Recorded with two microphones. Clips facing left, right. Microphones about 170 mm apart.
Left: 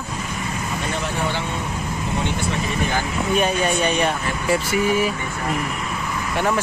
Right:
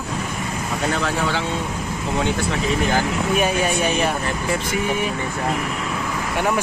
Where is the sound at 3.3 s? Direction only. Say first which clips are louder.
Left 1 dB; 5° right (ahead or behind).